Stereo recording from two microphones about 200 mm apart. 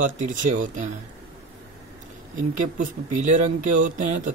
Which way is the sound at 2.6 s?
40° right (ahead or behind).